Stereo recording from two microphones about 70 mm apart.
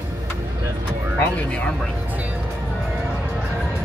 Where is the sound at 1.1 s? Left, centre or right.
Left.